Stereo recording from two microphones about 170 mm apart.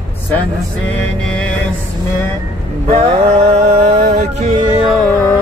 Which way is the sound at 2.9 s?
40° right (ahead or behind).